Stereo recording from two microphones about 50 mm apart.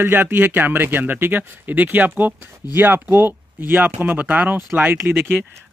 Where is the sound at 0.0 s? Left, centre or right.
Right.